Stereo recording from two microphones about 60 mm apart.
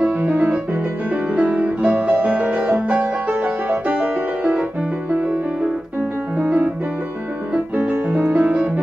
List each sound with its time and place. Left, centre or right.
0.0 s music: right
6.3 s piano: centre
7.5 s music: right